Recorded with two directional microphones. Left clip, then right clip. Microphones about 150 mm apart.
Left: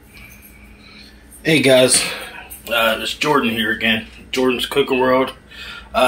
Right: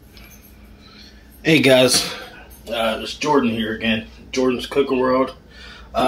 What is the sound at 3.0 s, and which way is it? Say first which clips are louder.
Speech: left 2 dB; 5° left (ahead or behind).